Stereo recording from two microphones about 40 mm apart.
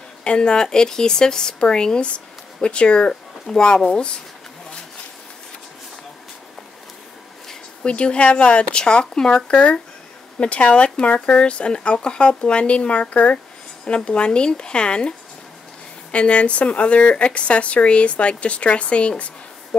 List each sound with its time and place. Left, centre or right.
0.2 s speech: left
7.8 s speech: left